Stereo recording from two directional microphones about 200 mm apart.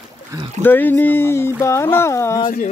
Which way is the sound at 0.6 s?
10° left (ahead or behind).